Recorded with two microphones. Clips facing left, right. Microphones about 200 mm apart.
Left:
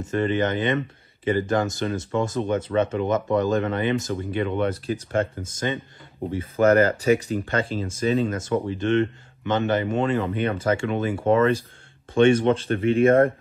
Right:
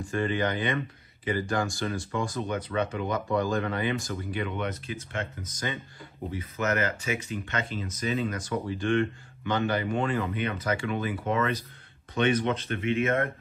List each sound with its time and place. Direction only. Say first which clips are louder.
0.0 s speech: left 5 dB; 20° left (ahead or behind)
6.7 s speech: left 11 dB; 40° left (ahead or behind)
12.2 s speech: left 8 dB; 30° left (ahead or behind)